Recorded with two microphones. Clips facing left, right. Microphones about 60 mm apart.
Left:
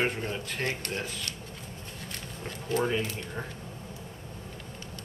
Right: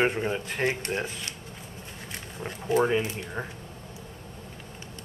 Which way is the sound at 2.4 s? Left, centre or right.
Centre.